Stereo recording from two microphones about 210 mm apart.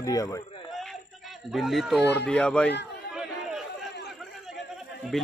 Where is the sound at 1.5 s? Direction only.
Centre (ahead or behind).